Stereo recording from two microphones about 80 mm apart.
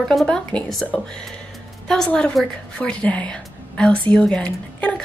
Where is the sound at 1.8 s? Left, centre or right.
Centre.